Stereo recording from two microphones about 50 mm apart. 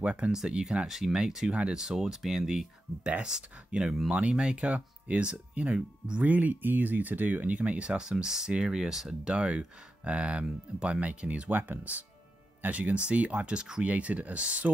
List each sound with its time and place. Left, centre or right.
0.0 s speech: right
0.8 s speech: centre; by 6.2 s right
6.2 s speech: right; by 9.3 s centre
9.3 s speech: centre